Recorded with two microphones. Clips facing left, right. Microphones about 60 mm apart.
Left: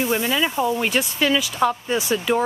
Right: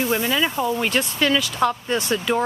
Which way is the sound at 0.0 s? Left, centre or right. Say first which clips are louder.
Even; centre.